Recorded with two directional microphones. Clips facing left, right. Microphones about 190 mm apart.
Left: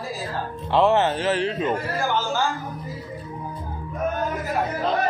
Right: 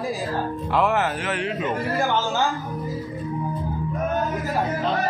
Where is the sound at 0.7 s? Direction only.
25° left (ahead or behind).